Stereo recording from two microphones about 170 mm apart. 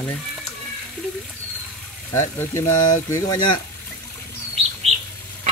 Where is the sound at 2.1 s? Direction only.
15° left (ahead or behind).